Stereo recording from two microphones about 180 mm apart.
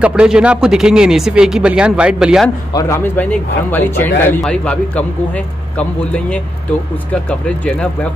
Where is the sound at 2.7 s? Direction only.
15° left (ahead or behind).